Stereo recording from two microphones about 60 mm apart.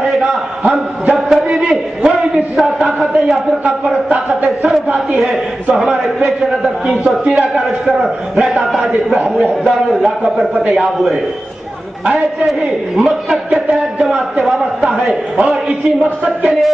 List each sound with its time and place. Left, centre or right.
0.0 s a sound: centre
1.1 s a man's voice: centre
3.6 s speech: centre
4.3 s a man's voice: centre
12.4 s a man's voice: centre